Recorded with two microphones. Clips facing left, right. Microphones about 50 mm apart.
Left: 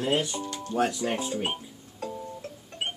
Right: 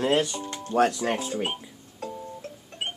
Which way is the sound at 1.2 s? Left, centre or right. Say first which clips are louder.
Right 1 dB; centre.